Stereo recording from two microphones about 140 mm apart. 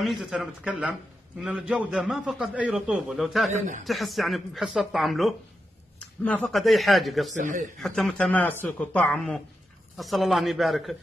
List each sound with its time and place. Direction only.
0.2 s a man's voice: 5° right (ahead or behind)
7.3 s a man's voice: 65° right (ahead or behind)
7.8 s a man's voice: 5° left (ahead or behind)